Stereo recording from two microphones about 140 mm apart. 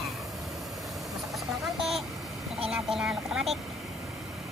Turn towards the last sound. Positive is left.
turn(degrees=0)  # may be behind; listen again after turning